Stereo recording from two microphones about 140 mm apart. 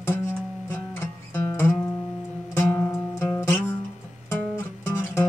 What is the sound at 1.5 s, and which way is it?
Music, 20° left (ahead or behind).